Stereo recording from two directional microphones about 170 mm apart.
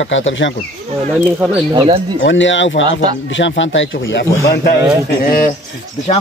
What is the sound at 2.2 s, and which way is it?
Speech, 90° left.